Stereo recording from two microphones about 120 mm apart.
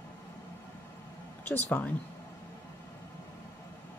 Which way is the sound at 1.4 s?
20° left (ahead or behind).